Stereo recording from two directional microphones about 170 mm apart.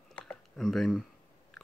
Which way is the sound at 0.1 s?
5° left (ahead or behind).